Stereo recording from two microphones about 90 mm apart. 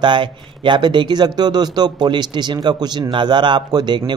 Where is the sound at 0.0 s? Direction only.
60° right (ahead or behind).